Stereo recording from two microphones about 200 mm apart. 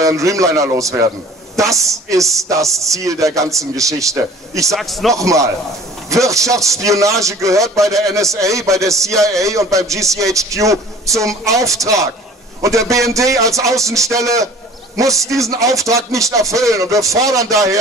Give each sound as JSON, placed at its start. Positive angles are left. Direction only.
{"t": 0.0, "sound": "a man's voice", "side_deg": -15}
{"t": 4.7, "sound": "a man's voice", "side_deg": 0}
{"t": 5.1, "sound": "a man's voice", "side_deg": -15}
{"t": 13.1, "sound": "a man's voice", "side_deg": -15}